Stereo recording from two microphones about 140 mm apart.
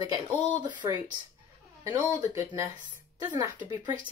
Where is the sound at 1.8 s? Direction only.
20° right (ahead or behind).